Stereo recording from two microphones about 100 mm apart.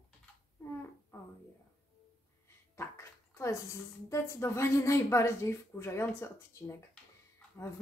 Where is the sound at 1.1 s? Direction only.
30° left (ahead or behind).